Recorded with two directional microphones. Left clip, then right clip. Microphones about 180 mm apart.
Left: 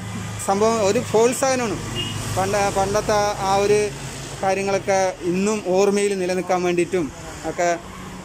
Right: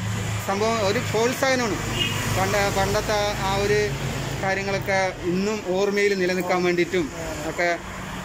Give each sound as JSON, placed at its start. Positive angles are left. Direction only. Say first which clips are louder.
{"t": 0.5, "sound": "speech", "louder": "left 4 dB", "side_deg": 15}